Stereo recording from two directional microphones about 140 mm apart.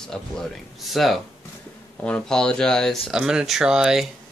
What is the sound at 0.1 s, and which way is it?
Speech, centre (ahead or behind).